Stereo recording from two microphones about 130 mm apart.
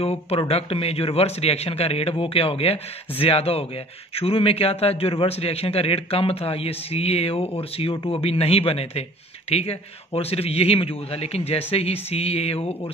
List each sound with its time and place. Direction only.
0.0 s a man's voice: 50° left (ahead or behind)